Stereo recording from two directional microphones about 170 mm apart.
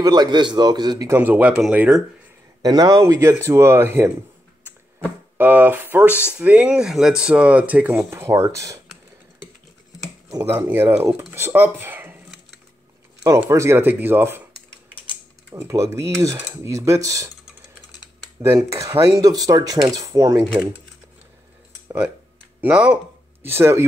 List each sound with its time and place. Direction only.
0.0 s speech: 25° right (ahead or behind); by 2.0 s 5° right (ahead or behind)
2.6 s speech: 20° right (ahead or behind)
5.4 s speech: 10° right (ahead or behind)
10.3 s speech: 10° right (ahead or behind)
11.3 s a sound: 15° right (ahead or behind)
13.4 s speech: 15° right (ahead or behind)
18.4 s speech: 15° right (ahead or behind)
21.8 s a sound: 10° right (ahead or behind)
22.6 s speech: 10° right (ahead or behind)